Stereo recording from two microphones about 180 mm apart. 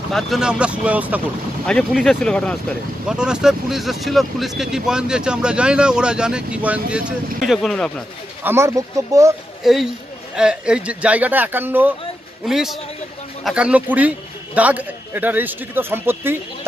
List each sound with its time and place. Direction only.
0.1 s a man's voice: centre (ahead or behind)
8.5 s a man's voice: 15° right (ahead or behind)
9.6 s a man's voice: centre (ahead or behind)